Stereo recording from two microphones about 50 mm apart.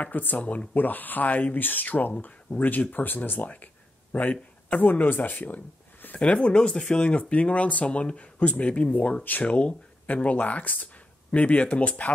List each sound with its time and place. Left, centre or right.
0.0 s speech: left
6.2 s speech: left